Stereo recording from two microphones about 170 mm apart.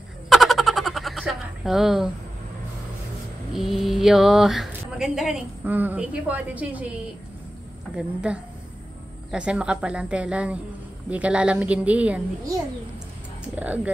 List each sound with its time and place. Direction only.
0.3 s a sound: centre (ahead or behind)
3.5 s speech: centre (ahead or behind)
7.9 s a woman's voice: 5° right (ahead or behind)